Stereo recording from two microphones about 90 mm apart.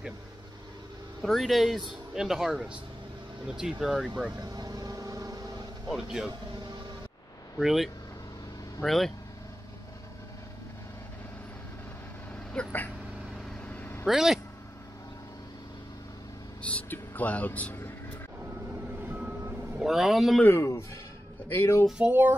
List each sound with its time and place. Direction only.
1.2 s speech: centre (ahead or behind)
4.4 s vehicle: 45° right (ahead or behind)
5.9 s speech: 5° right (ahead or behind)
7.5 s speech: centre (ahead or behind)
12.5 s vehicle: 20° left (ahead or behind)
14.0 s speech: 5° right (ahead or behind)
16.6 s a sound: 15° left (ahead or behind)
19.8 s speech: 5° right (ahead or behind)
20.4 s speech: 30° left (ahead or behind)
22.0 s music: 20° right (ahead or behind)